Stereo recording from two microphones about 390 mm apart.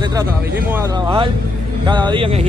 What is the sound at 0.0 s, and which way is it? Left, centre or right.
Speech, centre.